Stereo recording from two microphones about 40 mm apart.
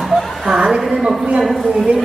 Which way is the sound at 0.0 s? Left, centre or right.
Centre.